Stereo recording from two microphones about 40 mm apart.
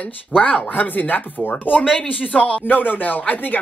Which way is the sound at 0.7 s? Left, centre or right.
Left.